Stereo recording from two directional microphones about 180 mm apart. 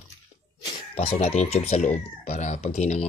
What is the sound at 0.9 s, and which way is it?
Speech, 35° left (ahead or behind).